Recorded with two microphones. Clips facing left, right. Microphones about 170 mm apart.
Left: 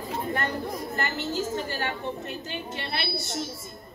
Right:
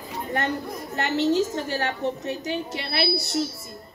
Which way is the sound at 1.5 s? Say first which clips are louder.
Right 3 dB; 85° right.